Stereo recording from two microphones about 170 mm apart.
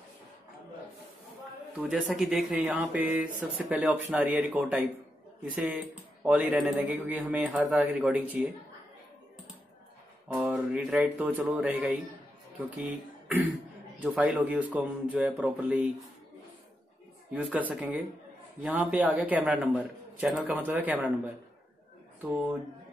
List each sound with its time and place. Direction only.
1.9 s speech: 5° right (ahead or behind)
10.2 s speech: 5° right (ahead or behind)
17.3 s speech: 10° right (ahead or behind)